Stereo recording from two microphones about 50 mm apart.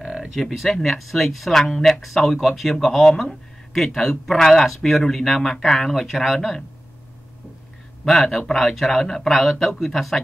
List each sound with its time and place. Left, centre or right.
0.0 s a sound: centre
0.4 s speech: centre
8.0 s speech: centre